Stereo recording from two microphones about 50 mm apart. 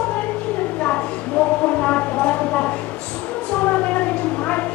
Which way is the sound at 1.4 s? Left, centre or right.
Left.